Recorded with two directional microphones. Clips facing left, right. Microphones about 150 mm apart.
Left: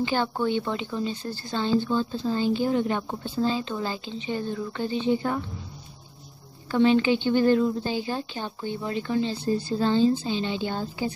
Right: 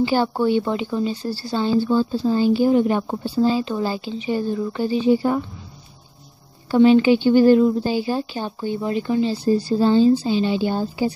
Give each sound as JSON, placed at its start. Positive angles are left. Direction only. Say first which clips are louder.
{"t": 0.0, "sound": "speech", "louder": "right 6 dB", "side_deg": -10}
{"t": 1.2, "sound": "speech", "louder": "right 7 dB", "side_deg": -35}
{"t": 1.5, "sound": "speech", "louder": "right 5 dB", "side_deg": -10}
{"t": 6.7, "sound": "speech", "louder": "right 7 dB", "side_deg": -15}